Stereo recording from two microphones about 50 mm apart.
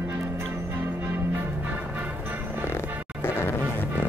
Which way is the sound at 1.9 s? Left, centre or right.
Right.